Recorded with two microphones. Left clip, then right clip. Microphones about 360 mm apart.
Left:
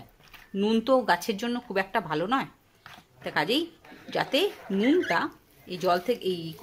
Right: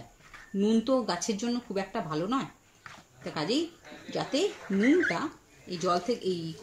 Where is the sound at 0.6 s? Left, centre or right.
Left.